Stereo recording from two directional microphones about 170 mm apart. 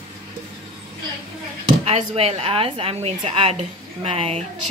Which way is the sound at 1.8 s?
40° right (ahead or behind).